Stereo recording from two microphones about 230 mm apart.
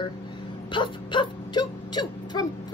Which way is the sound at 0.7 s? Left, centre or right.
Left.